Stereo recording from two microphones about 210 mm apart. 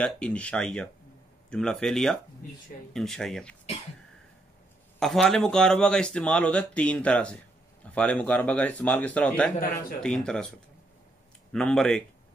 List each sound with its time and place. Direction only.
0.0 s speech: 5° left (ahead or behind)
5.0 s speech: centre (ahead or behind)
9.6 s a man's voice: 45° left (ahead or behind)
10.0 s speech: 5° left (ahead or behind)
11.5 s speech: centre (ahead or behind)